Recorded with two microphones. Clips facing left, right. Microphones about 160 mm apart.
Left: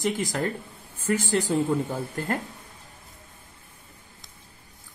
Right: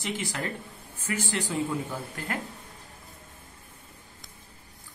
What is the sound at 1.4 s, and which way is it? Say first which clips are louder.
Speech: left 6 dB; 45° left (ahead or behind).